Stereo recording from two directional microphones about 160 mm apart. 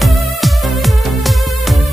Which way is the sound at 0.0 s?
Centre (ahead or behind).